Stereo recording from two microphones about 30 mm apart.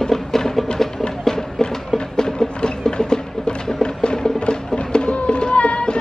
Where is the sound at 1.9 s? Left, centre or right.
Left.